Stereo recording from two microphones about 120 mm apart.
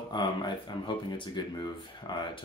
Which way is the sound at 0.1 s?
35° left (ahead or behind).